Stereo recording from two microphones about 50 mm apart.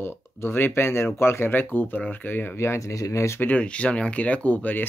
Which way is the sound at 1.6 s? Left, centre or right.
Left.